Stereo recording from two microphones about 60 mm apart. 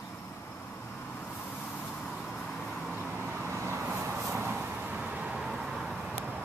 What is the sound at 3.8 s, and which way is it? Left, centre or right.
Vehicle, right.